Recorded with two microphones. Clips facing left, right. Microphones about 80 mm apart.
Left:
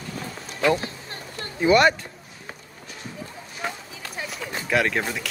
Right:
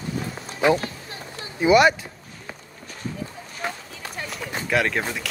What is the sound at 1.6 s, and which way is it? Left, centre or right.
Speech, centre.